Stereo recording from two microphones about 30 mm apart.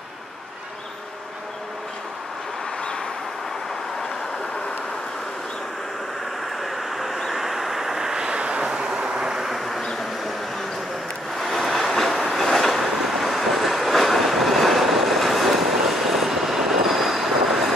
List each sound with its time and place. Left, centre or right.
6.6 s vehicle: centre
8.3 s vehicle: right
11.3 s train: centre